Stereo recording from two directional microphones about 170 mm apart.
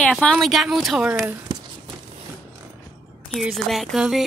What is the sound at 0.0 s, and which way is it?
Speech, 5° left (ahead or behind).